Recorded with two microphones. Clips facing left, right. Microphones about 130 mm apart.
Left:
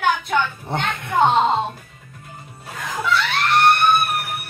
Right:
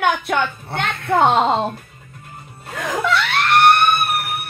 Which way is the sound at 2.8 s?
65° right (ahead or behind).